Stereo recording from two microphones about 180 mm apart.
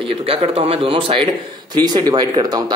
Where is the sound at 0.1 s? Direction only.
35° right (ahead or behind).